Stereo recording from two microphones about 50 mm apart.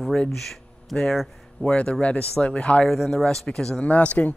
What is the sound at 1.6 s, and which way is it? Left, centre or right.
Speech, centre.